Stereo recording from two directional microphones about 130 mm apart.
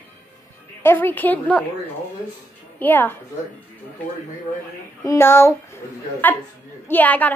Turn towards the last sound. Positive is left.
turn(degrees=15)  # may be behind; listen again after turning